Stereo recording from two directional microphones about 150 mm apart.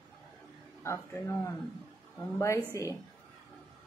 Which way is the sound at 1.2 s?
20° left (ahead or behind).